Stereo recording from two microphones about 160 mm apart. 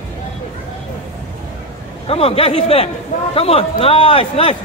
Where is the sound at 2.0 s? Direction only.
40° left (ahead or behind).